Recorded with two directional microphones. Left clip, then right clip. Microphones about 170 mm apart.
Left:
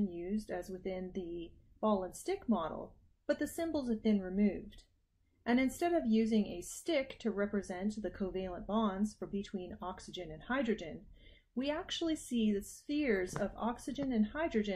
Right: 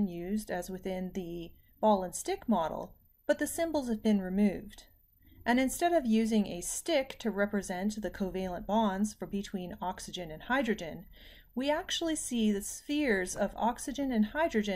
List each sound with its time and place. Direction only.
0.2 s a woman's voice: 15° right (ahead or behind)